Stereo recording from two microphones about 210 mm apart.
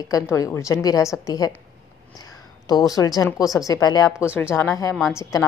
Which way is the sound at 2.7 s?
15° left (ahead or behind).